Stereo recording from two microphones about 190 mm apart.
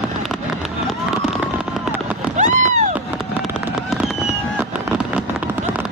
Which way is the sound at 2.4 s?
40° right (ahead or behind).